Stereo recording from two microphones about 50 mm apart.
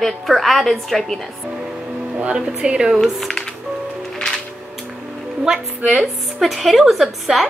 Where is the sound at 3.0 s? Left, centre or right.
Centre.